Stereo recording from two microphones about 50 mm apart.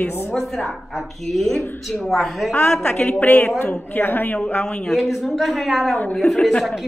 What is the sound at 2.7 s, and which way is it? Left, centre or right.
A woman's voice, centre.